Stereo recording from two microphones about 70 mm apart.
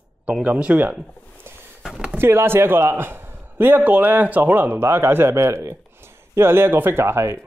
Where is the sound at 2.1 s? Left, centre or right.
Right.